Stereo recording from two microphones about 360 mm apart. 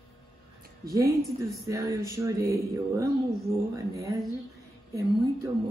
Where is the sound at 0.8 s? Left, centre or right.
Centre.